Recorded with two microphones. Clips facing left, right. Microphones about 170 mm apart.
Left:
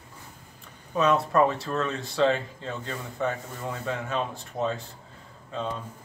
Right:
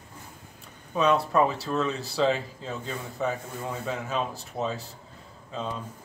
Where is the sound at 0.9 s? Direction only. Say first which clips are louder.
Even; centre (ahead or behind).